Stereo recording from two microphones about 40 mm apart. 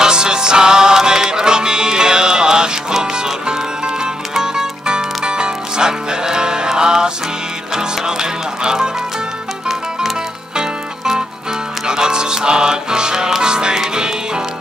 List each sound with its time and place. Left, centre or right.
0.0 s music: centre